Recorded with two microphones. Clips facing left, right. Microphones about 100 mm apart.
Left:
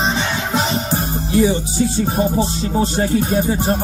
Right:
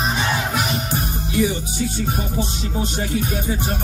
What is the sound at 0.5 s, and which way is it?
Music, 30° left (ahead or behind).